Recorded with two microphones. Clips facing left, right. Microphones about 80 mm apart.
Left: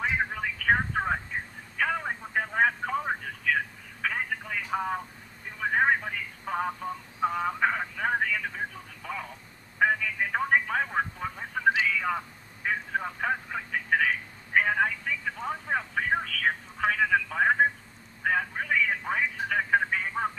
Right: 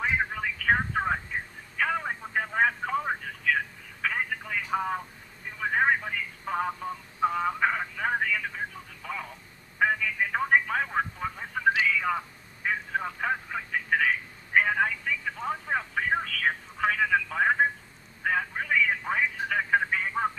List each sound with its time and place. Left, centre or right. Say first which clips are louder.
0.0 s telephone: right 1 dB; centre